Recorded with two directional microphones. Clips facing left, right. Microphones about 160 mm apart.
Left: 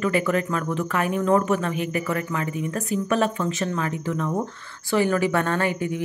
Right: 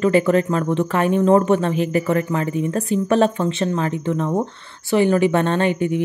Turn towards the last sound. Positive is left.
turn(degrees=-20)  # may be behind; listen again after turning